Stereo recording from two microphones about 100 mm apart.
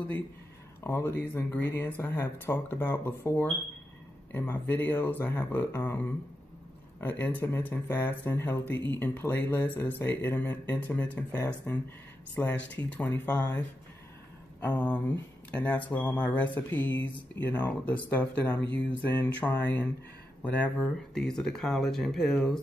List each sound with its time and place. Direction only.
0.8 s speech: 20° left (ahead or behind)
14.7 s speech: 15° left (ahead or behind)